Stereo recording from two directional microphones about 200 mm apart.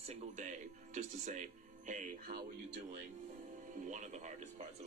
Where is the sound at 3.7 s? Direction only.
40° right (ahead or behind).